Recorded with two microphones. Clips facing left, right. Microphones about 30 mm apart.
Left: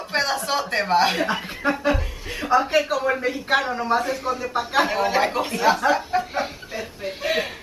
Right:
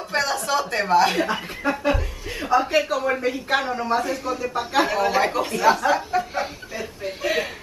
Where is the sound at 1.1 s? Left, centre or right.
Centre.